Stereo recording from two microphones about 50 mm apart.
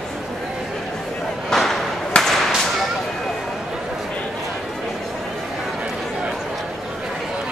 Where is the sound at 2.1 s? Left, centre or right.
Centre.